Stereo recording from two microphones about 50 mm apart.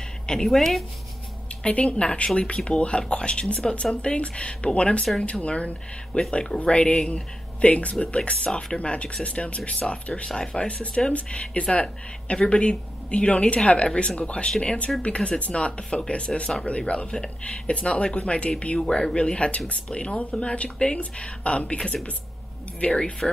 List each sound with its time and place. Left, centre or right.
0.3 s a woman's voice: centre
1.6 s speech: left